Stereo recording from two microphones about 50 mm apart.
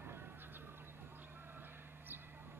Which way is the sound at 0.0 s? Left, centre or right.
Right.